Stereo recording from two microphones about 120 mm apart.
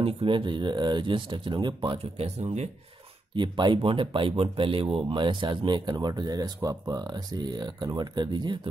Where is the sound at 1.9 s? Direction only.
55° right (ahead or behind).